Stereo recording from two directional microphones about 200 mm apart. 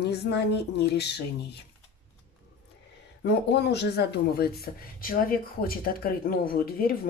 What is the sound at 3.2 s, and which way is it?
Speech, 55° left (ahead or behind).